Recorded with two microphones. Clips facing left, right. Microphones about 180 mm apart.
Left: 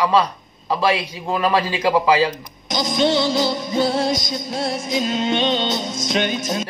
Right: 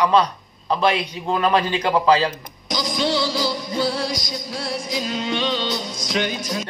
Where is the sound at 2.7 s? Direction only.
25° left (ahead or behind).